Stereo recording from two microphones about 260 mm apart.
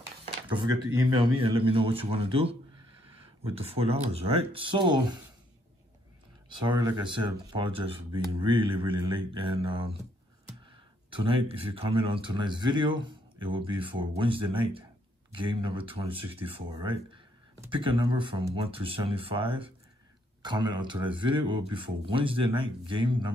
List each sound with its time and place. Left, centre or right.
0.2 s a sound: centre
0.8 s speech: centre
3.5 s speech: right
6.7 s speech: centre
11.1 s speech: centre